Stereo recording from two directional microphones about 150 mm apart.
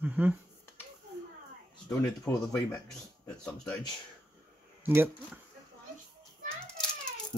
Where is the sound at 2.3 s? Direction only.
15° left (ahead or behind).